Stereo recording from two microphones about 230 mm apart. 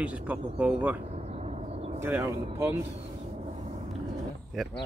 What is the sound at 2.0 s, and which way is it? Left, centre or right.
Speech, centre.